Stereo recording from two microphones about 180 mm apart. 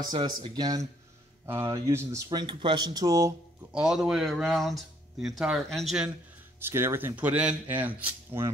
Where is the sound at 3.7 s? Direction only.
5° right (ahead or behind).